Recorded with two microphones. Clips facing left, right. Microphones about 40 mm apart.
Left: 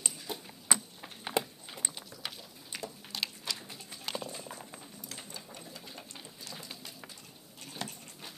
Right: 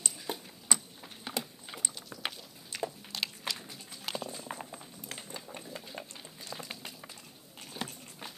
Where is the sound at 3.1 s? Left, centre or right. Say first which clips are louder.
Right 1 dB; centre.